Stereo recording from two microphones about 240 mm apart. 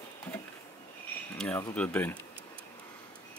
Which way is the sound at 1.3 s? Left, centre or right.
Centre.